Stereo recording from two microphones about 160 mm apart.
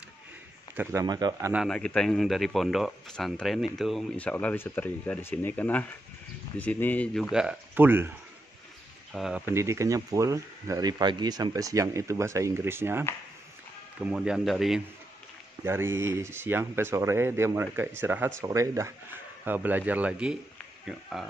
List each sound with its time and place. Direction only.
0.7 s speech: 20° right (ahead or behind)
1.7 s speech: 5° left (ahead or behind); by 8.1 s 15° right (ahead or behind)
9.1 s speech: centre (ahead or behind)
9.4 s speech: 15° right (ahead or behind)
13.9 s speech: 5° right (ahead or behind)
15.6 s speech: 15° right (ahead or behind)